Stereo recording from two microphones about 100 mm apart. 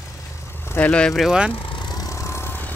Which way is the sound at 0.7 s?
15° left (ahead or behind).